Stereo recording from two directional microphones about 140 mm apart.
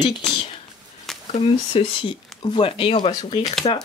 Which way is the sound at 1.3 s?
50° left (ahead or behind).